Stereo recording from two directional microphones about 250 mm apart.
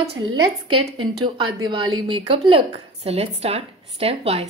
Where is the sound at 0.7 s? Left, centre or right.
Centre.